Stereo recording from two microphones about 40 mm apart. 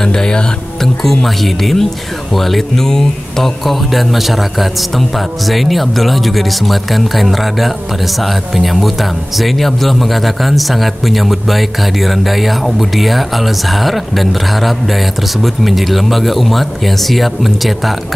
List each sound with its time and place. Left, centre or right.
0.0 s speech: centre
1.0 s speech: centre
3.6 s speech: centre